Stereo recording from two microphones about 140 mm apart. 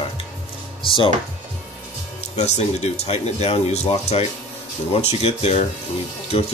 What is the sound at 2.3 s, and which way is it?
Speech, 55° left (ahead or behind).